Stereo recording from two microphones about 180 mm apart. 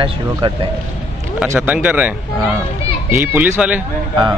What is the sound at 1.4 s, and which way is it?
Speech, 10° right (ahead or behind).